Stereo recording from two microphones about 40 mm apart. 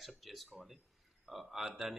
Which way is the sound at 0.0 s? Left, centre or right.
Centre.